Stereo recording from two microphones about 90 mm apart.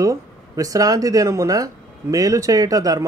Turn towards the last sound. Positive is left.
turn(degrees=-40)  # may be behind; listen again after turning